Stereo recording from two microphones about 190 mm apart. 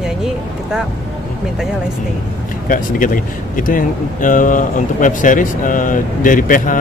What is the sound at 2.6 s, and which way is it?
Speech, 45° left (ahead or behind).